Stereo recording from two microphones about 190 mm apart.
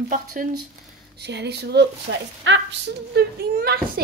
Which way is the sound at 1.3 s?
60° right (ahead or behind).